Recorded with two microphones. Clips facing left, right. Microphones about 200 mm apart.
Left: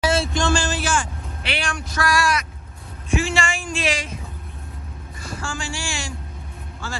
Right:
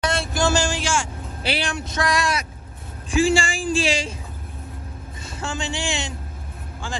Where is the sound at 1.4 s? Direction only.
35° right (ahead or behind).